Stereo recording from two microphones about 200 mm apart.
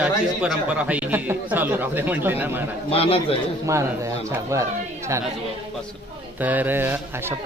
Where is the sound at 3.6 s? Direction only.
15° right (ahead or behind).